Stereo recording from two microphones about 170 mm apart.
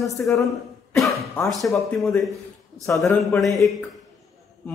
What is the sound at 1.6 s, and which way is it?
Speech, centre (ahead or behind).